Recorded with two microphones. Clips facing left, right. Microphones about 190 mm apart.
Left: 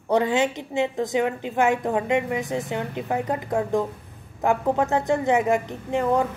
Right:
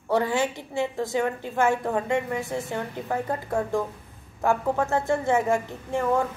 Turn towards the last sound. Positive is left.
turn(degrees=20)  # may be behind; listen again after turning